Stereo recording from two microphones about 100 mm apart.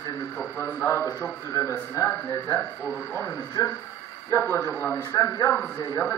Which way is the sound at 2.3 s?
45° left (ahead or behind).